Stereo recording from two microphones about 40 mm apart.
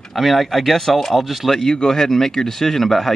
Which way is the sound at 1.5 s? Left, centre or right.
Centre.